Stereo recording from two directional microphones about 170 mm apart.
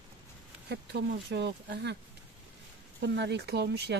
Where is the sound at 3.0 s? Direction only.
90° right.